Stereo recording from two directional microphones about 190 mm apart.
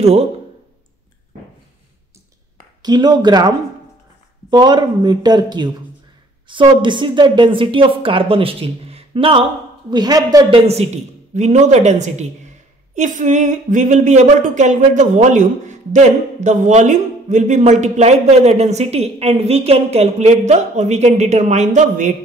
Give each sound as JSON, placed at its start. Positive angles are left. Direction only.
{"t": 0.0, "sound": "speech", "side_deg": -35}
{"t": 2.8, "sound": "speech", "side_deg": -20}
{"t": 10.6, "sound": "speech", "side_deg": -35}